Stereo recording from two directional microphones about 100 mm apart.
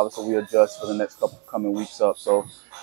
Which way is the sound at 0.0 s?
25° right (ahead or behind).